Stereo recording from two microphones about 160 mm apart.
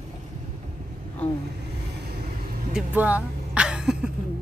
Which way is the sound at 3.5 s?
5° right (ahead or behind).